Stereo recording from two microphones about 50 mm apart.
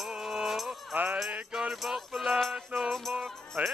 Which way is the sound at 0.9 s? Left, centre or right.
Right.